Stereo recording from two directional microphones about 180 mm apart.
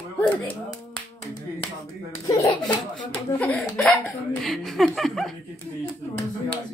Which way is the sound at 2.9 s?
5° left (ahead or behind).